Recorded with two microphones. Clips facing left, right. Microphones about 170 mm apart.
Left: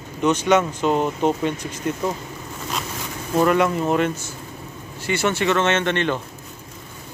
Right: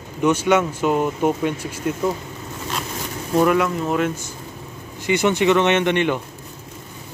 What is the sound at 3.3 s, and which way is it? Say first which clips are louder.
Speech: right 1 dB; centre (ahead or behind).